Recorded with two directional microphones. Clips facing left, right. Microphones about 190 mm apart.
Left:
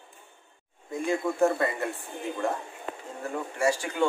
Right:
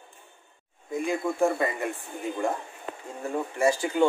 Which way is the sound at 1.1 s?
15° right (ahead or behind).